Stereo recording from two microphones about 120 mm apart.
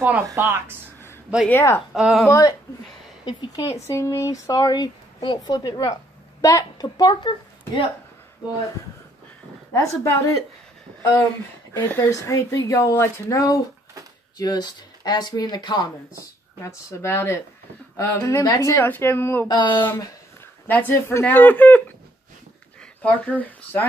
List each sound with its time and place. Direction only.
0.3 s speech: 20° right (ahead or behind)
1.5 s speech: 20° left (ahead or behind)
2.0 s speech: 5° right (ahead or behind)
2.2 s speech: 25° left (ahead or behind)
3.3 s speech: 40° left (ahead or behind)
3.7 s a woman's voice: 25° left (ahead or behind); by 7.9 s 40° left (ahead or behind)
9.8 s speech: 25° left (ahead or behind)
11.7 s speech: 15° left (ahead or behind)
12.1 s speech: 25° left (ahead or behind)
16.2 s speech: 25° left (ahead or behind)
19.4 s speech: 40° left (ahead or behind)
19.7 s speech: 15° left (ahead or behind)
23.0 s speech: 15° left (ahead or behind)